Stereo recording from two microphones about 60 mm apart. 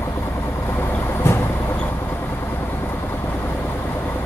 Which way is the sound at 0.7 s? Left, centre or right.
Left.